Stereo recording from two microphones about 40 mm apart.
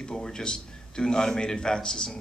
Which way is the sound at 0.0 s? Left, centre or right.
Centre.